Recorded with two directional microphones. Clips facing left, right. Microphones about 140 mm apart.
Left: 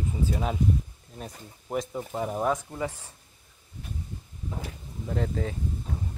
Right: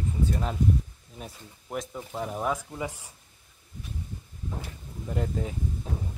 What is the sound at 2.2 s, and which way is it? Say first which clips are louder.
Speech: left 2 dB; centre (ahead or behind).